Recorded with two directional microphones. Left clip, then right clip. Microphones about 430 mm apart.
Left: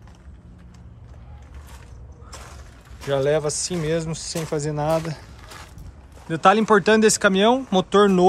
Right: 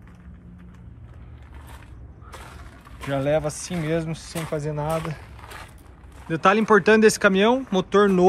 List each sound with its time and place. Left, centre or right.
3.1 s speech: centre
6.2 s speech: centre